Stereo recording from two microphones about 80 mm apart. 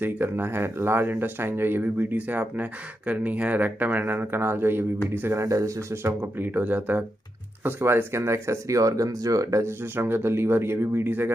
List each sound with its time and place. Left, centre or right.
0.0 s speech: right
5.4 s speech: right